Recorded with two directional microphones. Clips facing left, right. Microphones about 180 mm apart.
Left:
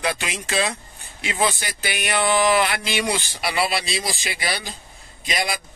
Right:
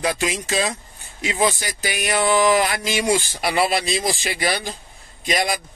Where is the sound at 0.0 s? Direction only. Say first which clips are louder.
Right 4 dB; 40° right (ahead or behind).